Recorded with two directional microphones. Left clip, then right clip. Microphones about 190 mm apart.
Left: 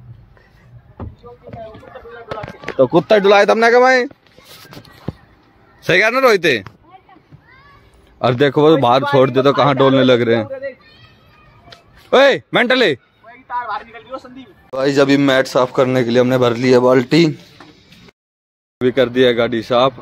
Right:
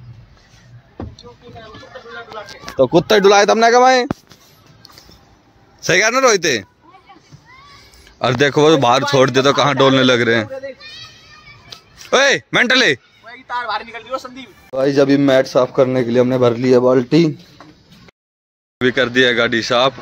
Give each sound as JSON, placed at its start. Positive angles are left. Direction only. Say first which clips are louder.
{"t": 3.3, "sound": "a man's voice", "louder": "right 1 dB", "side_deg": -10}
{"t": 5.8, "sound": "a man's voice", "louder": "left 1 dB", "side_deg": 0}
{"t": 8.2, "sound": "a man's voice", "louder": "even", "side_deg": 5}
{"t": 12.1, "sound": "speech", "louder": "left 2 dB", "side_deg": 10}
{"t": 13.3, "sound": "a man's voice", "louder": "right 1 dB", "side_deg": -40}
{"t": 14.7, "sound": "a man's voice", "louder": "even", "side_deg": 0}
{"t": 18.8, "sound": "a man's voice", "louder": "even", "side_deg": 0}